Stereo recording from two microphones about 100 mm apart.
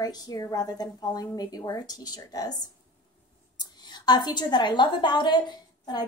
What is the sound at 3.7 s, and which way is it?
A woman's voice, 45° left (ahead or behind).